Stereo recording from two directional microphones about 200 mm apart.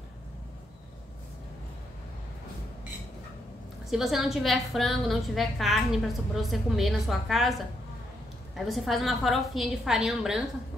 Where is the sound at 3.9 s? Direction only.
Centre (ahead or behind).